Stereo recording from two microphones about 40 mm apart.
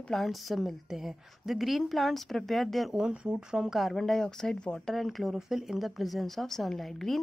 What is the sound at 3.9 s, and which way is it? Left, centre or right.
Speech, centre.